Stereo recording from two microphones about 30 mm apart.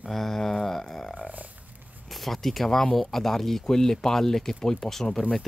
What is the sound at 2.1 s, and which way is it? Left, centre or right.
Speech, centre.